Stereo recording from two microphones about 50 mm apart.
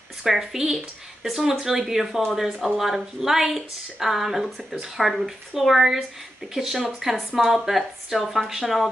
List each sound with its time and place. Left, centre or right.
0.2 s a woman's voice: centre